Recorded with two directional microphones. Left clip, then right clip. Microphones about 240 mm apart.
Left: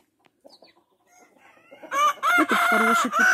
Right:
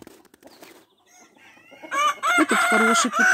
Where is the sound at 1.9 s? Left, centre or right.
Left.